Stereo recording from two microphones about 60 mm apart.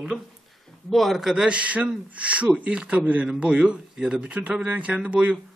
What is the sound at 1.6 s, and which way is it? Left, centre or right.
A man's voice, right.